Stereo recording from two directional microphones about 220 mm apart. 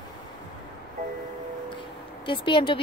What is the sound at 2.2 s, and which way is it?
Speech, 20° left (ahead or behind).